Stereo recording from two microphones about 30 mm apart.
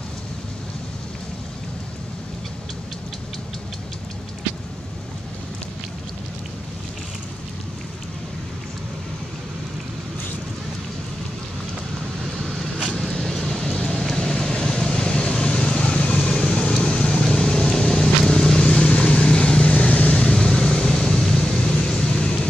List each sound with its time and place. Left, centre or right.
12.9 s vehicle: centre
13.7 s vehicle: left
15.2 s vehicle: left
17.3 s vehicle: left
19.7 s vehicle: left
20.2 s vehicle: left